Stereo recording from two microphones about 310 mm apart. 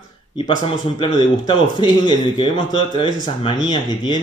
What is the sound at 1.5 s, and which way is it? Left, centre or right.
Speech, centre.